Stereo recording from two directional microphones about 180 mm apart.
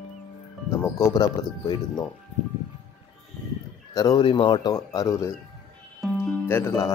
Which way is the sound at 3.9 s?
20° left (ahead or behind).